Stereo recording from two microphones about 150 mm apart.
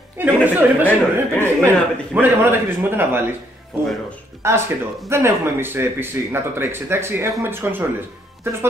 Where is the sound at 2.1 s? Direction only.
10° right (ahead or behind).